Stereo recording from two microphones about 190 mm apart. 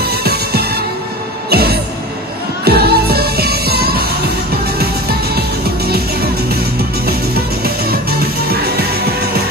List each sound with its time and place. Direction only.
0.0 s music: 55° right (ahead or behind)